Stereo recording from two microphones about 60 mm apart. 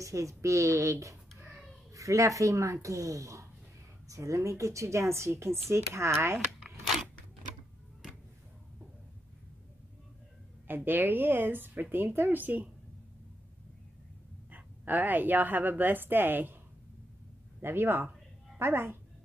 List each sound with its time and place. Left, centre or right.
0.0 s speech: right
10.7 s a woman's voice: right
14.5 s a woman's voice: right
17.6 s a woman's voice: right